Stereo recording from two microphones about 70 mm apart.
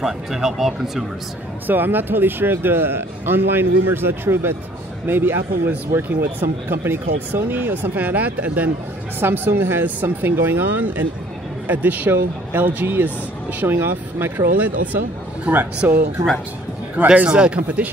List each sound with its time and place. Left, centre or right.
0.0 s speech: centre
1.7 s a man's voice: right
10.8 s a man's voice: right
15.5 s speech: centre
15.8 s speech: right
17.0 s speech: right
17.6 s speech: right